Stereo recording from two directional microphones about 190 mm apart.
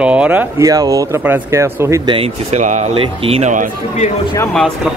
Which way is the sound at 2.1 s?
40° right (ahead or behind).